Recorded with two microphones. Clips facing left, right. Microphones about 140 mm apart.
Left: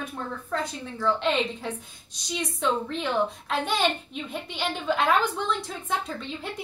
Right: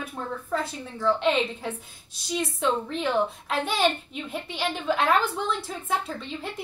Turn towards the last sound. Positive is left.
turn(degrees=0)  # may be behind; listen again after turning